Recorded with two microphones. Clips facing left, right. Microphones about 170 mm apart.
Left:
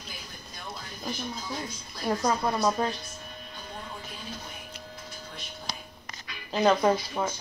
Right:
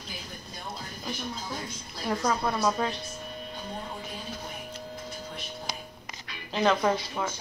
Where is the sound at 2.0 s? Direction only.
15° left (ahead or behind).